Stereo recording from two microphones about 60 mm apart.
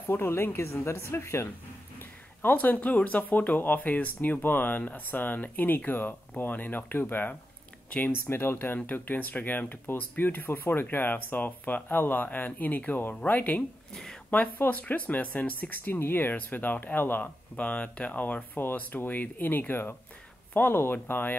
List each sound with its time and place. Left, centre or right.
0.1 s a woman's voice: left
2.4 s speech: left